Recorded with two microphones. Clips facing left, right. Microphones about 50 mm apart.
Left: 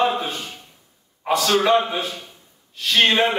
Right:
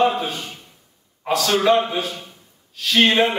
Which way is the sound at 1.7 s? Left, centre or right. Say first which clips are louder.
Right 1 dB; centre.